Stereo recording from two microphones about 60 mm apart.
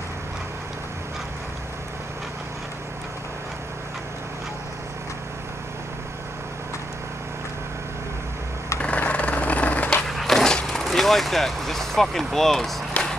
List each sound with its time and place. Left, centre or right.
8.8 s a sound: left
10.0 s dog: centre
13.0 s music: left